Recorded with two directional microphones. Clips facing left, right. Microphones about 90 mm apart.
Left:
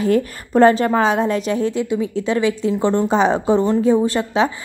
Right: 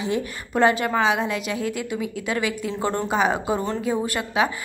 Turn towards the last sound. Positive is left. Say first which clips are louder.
# left 6 dB
turn(degrees=25)  # may be behind; listen again after turning